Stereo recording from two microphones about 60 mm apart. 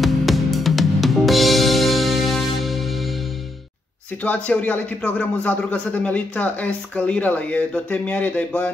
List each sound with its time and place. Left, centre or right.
0.0 s music: centre
4.2 s a man's voice: left